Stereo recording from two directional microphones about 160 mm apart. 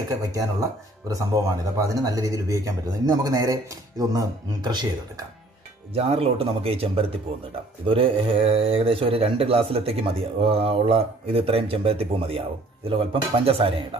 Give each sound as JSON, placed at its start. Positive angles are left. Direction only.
{"t": 0.3, "sound": "speech", "side_deg": -20}
{"t": 5.9, "sound": "speech", "side_deg": -40}